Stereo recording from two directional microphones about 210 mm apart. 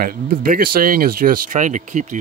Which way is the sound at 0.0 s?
45° right (ahead or behind).